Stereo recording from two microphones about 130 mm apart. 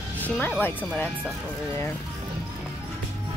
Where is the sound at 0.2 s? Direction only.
10° left (ahead or behind).